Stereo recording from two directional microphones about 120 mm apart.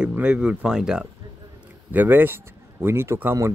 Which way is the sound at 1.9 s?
15° right (ahead or behind).